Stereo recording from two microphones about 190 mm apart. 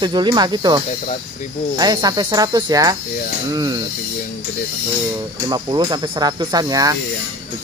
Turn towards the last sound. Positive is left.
turn(degrees=-20)  # may be behind; listen again after turning